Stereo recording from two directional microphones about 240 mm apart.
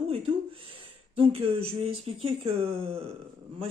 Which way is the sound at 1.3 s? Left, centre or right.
Right.